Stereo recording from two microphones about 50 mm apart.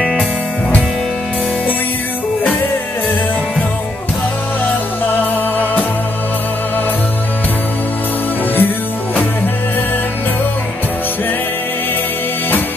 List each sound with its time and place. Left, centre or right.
8.5 s music: left